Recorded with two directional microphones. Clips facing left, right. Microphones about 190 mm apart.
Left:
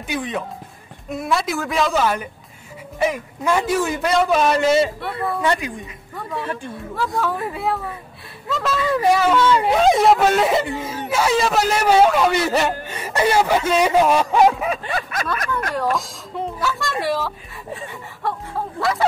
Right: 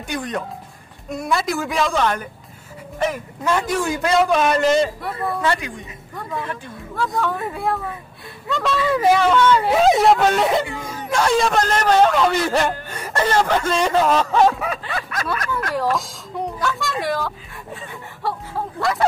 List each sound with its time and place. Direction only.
0.0 s a man's voice: 5° left (ahead or behind)
5.4 s a woman's voice: 20° left (ahead or behind)
7.0 s a man's voice: centre (ahead or behind)
15.7 s a man's voice: centre (ahead or behind)
18.2 s a sound: centre (ahead or behind)